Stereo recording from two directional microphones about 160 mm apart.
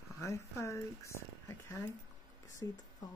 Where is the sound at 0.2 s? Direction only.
20° left (ahead or behind).